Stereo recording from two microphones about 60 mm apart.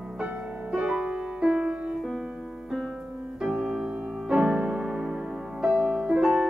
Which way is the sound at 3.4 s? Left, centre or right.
Centre.